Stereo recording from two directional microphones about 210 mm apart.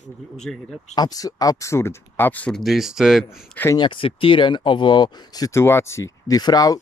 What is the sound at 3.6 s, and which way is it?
Speech, 20° left (ahead or behind).